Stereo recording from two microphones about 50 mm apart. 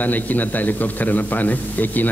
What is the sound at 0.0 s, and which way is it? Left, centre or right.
Speech, left.